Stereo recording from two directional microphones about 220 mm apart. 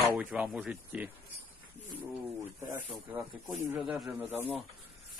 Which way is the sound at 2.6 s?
15° right (ahead or behind).